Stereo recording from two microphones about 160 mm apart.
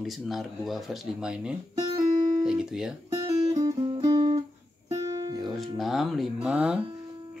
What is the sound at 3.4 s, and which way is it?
Music, 25° right (ahead or behind).